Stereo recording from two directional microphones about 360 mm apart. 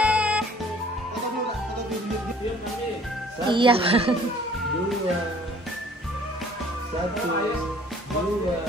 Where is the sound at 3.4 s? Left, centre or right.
Centre.